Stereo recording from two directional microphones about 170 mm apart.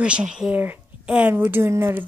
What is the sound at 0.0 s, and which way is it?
A woman's voice, 5° right (ahead or behind).